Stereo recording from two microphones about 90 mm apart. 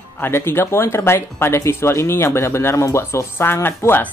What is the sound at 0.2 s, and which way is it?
Speech, 25° left (ahead or behind).